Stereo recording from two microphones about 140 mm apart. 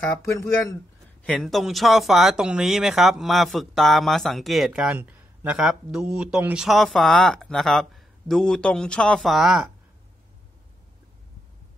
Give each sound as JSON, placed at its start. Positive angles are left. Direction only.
{"t": 0.2, "sound": "speech", "side_deg": 20}
{"t": 1.2, "sound": "speech", "side_deg": 5}